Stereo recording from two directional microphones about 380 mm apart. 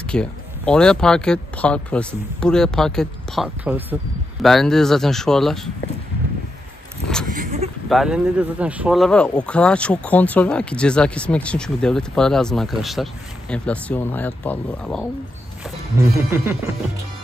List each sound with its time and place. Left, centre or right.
0.0 s speech: centre
7.2 s a sound: centre
7.9 s speech: centre